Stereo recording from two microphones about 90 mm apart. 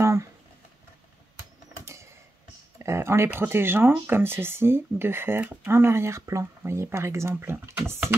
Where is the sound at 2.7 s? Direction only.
30° right (ahead or behind).